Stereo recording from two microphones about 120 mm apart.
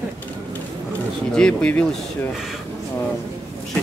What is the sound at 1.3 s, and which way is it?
Speech, 5° left (ahead or behind).